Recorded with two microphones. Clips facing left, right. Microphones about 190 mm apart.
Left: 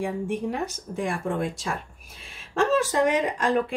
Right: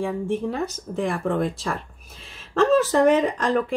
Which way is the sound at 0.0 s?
15° left (ahead or behind).